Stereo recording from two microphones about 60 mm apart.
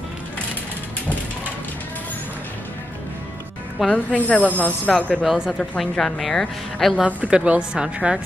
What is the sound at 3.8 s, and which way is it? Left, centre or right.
Speech, left.